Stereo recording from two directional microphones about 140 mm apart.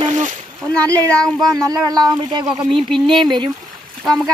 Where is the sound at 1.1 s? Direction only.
5° left (ahead or behind).